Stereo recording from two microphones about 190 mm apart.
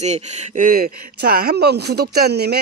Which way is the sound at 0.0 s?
35° right (ahead or behind).